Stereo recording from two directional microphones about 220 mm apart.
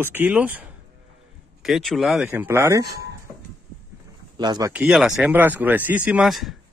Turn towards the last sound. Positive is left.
turn(degrees=0)  # may be behind; listen again after turning